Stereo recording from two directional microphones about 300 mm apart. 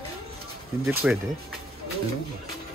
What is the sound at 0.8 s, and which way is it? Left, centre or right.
Speech, centre.